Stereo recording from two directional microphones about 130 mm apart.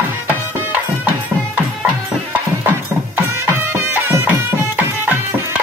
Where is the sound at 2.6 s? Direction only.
20° right (ahead or behind).